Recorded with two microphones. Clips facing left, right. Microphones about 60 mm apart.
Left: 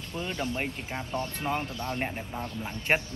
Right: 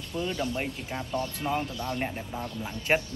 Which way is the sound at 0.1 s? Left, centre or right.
Centre.